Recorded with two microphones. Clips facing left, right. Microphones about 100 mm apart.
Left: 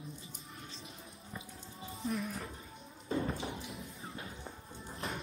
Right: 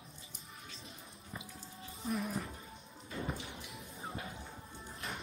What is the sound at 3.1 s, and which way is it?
Music, 30° left (ahead or behind).